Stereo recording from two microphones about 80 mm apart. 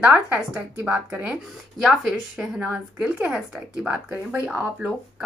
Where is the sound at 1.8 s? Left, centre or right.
Centre.